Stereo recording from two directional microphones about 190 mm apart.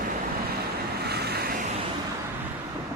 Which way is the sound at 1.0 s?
55° right (ahead or behind).